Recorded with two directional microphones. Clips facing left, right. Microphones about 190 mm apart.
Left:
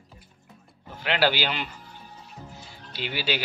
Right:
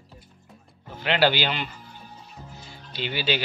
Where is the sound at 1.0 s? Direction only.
10° left (ahead or behind).